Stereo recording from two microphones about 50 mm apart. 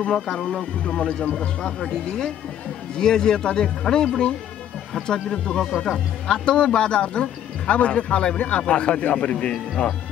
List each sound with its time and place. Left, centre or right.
0.0 s a man's voice: centre